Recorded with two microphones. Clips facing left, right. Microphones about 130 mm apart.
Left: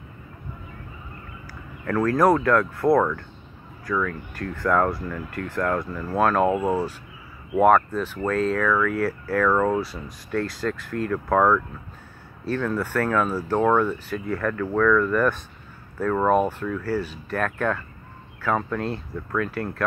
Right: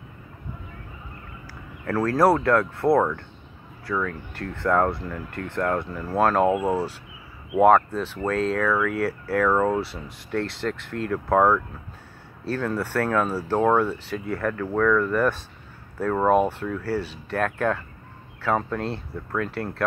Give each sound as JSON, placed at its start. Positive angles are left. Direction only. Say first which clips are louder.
{"t": 1.9, "sound": "speech", "louder": "left 1 dB", "side_deg": -35}
{"t": 6.4, "sound": "speech", "louder": "even", "side_deg": -5}
{"t": 7.6, "sound": "speech", "louder": "right 1 dB", "side_deg": -30}